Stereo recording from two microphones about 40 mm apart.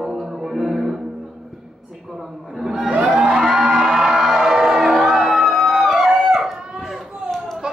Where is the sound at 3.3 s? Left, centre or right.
Centre.